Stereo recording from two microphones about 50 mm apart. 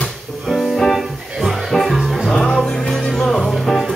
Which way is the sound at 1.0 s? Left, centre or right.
Centre.